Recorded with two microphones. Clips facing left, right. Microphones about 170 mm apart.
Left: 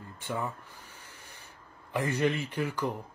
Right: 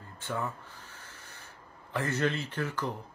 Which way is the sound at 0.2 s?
15° left (ahead or behind).